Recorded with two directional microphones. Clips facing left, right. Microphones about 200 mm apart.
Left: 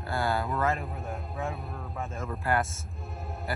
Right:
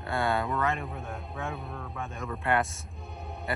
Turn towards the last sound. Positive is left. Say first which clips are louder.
# even
turn(degrees=0)  # may be behind; listen again after turning